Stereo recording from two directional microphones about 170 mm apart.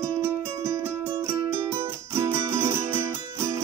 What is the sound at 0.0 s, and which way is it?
Music, 15° right (ahead or behind).